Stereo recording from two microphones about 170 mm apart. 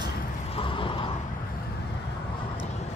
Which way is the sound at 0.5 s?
30° left (ahead or behind).